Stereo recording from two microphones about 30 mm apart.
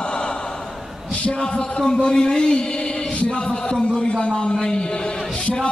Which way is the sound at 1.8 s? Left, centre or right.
Left.